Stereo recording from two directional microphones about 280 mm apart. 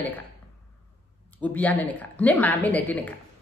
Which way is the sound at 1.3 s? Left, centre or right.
Centre.